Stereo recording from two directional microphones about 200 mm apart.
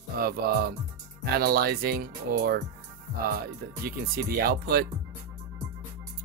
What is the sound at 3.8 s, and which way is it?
Speech, 50° right (ahead or behind).